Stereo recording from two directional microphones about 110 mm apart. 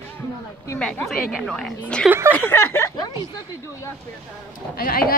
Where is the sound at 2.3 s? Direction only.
20° left (ahead or behind).